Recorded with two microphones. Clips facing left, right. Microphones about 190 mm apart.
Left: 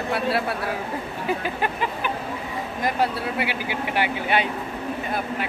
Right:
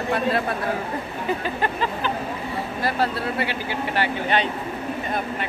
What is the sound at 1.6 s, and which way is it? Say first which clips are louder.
Speech: right 1 dB; 15° left (ahead or behind).